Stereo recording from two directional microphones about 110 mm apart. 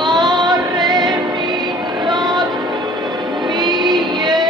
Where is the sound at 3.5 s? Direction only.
45° right (ahead or behind).